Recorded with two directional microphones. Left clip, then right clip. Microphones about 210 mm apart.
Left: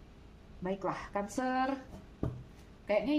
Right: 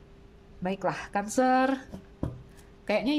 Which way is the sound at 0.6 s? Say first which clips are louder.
Right 6 dB; 50° right (ahead or behind).